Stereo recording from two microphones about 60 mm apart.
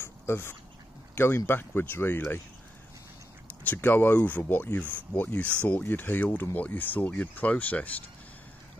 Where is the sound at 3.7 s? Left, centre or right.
Left.